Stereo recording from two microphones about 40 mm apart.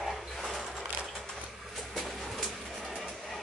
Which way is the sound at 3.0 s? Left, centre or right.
Centre.